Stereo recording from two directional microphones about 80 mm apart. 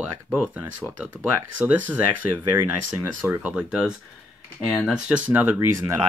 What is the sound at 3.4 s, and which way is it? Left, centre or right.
Speech, centre.